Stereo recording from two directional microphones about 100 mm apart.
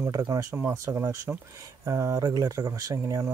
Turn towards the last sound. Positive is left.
turn(degrees=-30)  # may be behind; listen again after turning